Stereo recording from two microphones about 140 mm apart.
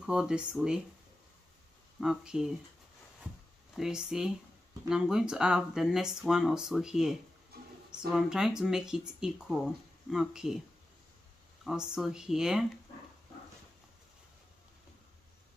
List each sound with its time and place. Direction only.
0.0 s speech: 5° right (ahead or behind)
2.0 s speech: 5° right (ahead or behind)
3.7 s speech: 5° right (ahead or behind)
7.5 s a sound: 90° right
8.1 s speech: 5° right (ahead or behind)
11.6 s speech: 5° right (ahead or behind)